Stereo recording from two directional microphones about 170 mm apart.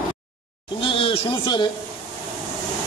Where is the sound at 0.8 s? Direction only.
30° left (ahead or behind).